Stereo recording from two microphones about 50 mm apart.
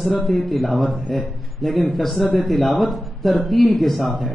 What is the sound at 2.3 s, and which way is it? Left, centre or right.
Speech, centre.